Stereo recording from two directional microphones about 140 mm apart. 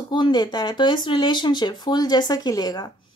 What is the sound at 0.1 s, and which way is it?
Speech, 30° left (ahead or behind).